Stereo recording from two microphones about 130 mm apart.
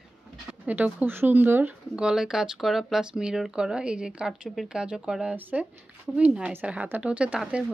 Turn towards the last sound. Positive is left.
turn(degrees=-5)  # may be behind; listen again after turning